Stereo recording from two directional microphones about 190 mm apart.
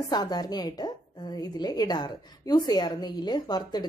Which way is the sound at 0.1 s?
20° left (ahead or behind).